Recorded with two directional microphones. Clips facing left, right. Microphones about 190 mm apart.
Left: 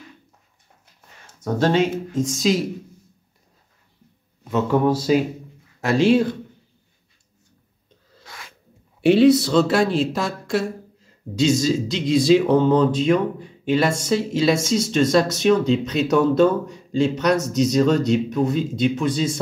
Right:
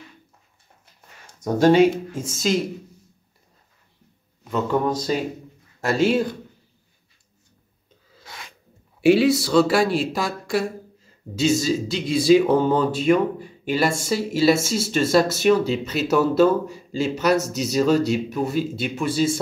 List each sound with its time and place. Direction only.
1.2 s speech: 10° right (ahead or behind)
4.5 s speech: 5° left (ahead or behind)
8.3 s sneeze: 20° right (ahead or behind)
9.0 s speech: 5° right (ahead or behind)